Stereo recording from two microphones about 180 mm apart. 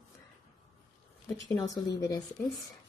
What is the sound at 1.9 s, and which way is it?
Speech, 20° left (ahead or behind).